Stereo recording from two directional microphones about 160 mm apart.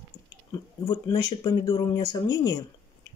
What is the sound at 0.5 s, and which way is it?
Speech, 25° left (ahead or behind).